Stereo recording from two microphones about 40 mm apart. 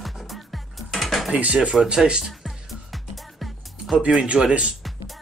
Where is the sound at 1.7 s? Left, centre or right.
Centre.